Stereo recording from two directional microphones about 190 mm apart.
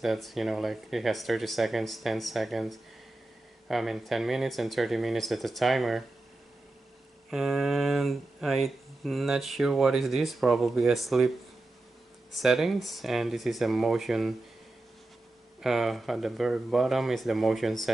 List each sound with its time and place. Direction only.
0.0 s speech: centre (ahead or behind)
7.2 s speech: centre (ahead or behind)
15.6 s speech: centre (ahead or behind)